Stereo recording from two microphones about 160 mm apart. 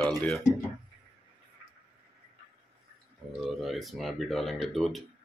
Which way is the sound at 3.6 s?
Centre (ahead or behind).